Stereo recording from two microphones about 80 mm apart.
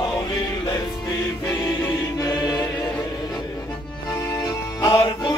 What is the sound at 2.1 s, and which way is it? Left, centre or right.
Choir, left.